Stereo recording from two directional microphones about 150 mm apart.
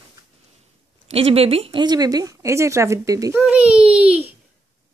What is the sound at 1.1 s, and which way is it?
Speech, 40° right (ahead or behind).